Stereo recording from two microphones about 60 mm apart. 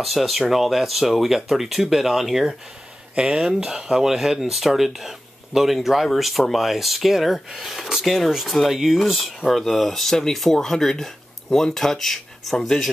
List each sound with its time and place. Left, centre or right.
0.0 s speech: centre